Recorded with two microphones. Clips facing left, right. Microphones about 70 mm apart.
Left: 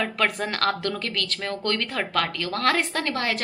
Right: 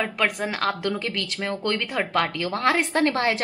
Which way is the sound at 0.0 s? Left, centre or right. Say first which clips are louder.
Even; centre.